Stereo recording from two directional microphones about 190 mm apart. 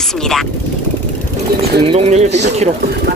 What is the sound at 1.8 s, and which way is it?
Speech, 30° right (ahead or behind).